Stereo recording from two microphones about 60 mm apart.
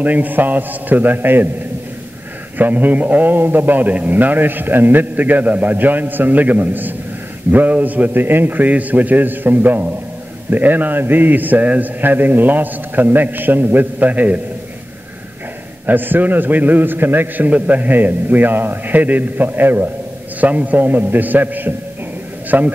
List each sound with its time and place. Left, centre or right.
0.0 s a man's voice: right
2.5 s a man's voice: right
15.9 s a man's voice: right